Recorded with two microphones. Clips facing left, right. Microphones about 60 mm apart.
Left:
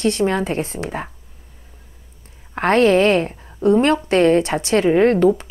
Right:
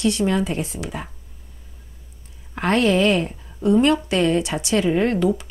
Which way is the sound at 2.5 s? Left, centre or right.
Left.